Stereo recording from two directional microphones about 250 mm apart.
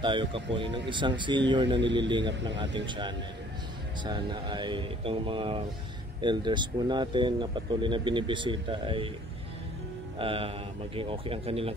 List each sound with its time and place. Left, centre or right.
0.0 s speech: centre
10.1 s mantra: right
11.0 s speech: right